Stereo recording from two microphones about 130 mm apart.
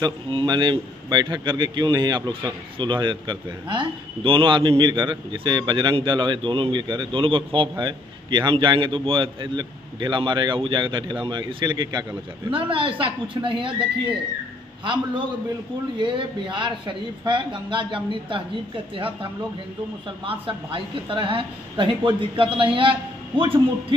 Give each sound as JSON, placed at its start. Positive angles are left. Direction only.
{"t": 0.0, "sound": "a man's voice", "side_deg": -35}
{"t": 16.0, "sound": "a man's voice", "side_deg": -40}
{"t": 20.2, "sound": "a man's voice", "side_deg": -45}